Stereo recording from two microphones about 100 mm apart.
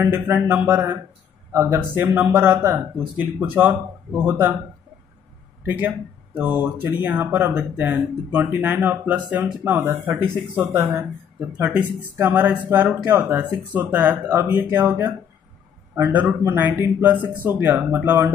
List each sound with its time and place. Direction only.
0.3 s speech: 20° right (ahead or behind)
5.7 s speech: 20° right (ahead or behind)